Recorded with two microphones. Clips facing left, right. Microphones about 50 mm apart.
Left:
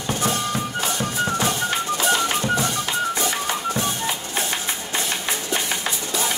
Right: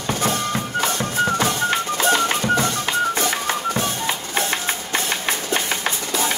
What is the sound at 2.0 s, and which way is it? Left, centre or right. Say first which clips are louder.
Music: right 3 dB; right.